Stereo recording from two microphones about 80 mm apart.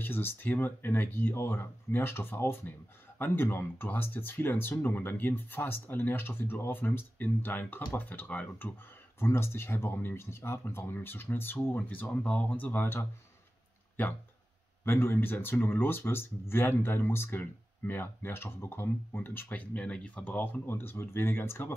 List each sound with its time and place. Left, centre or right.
0.0 s speech: left
9.2 s speech: left